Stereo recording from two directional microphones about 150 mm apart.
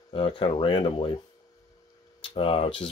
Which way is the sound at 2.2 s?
40° left (ahead or behind).